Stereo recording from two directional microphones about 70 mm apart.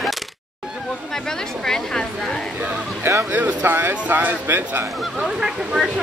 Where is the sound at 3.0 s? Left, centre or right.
Right.